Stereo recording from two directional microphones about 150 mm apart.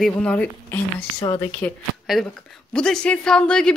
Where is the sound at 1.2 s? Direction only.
25° left (ahead or behind).